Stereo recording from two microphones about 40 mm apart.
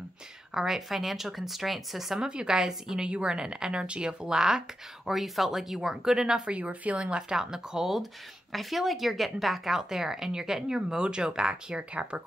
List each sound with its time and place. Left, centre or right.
0.6 s speech: centre
2.1 s a woman's voice: centre
6.4 s speech: right
7.0 s speech: right
7.9 s speech: centre; by 12.2 s right